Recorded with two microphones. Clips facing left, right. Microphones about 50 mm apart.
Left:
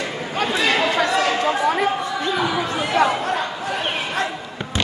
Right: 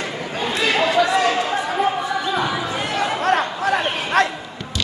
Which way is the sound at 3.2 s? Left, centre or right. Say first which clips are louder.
Right 4 dB; right.